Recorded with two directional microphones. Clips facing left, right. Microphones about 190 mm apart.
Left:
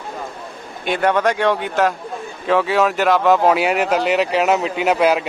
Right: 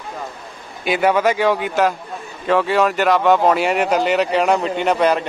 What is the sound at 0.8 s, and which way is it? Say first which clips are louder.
Speech: right 1 dB; 5° right (ahead or behind).